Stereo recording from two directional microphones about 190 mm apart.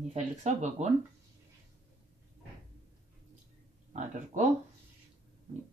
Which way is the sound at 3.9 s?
40° right (ahead or behind).